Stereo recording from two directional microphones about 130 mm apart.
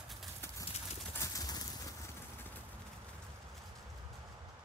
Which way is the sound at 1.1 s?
30° left (ahead or behind).